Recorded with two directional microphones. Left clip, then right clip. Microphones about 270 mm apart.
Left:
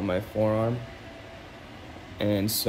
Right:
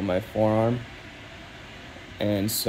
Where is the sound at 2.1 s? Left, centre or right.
Centre.